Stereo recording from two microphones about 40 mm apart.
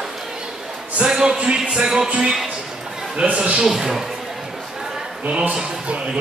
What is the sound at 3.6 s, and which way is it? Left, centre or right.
Speech, centre.